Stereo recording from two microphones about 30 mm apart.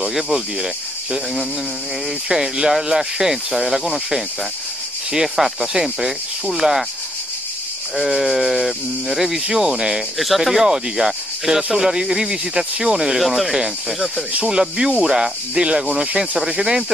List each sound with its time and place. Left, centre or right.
0.0 s speech: centre
2.2 s speech: right
5.3 s speech: centre
7.9 s speech: centre; by 10.0 s right
10.1 s speech: centre
10.5 s speech: centre
13.2 s speech: centre
14.4 s speech: right